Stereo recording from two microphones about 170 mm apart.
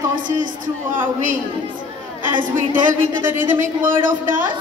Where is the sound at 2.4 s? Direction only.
50° right (ahead or behind).